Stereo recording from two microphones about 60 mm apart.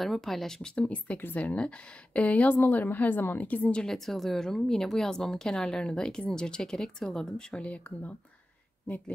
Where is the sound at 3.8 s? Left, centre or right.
Centre.